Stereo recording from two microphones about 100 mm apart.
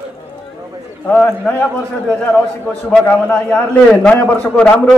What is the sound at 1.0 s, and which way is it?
Speech, 10° left (ahead or behind).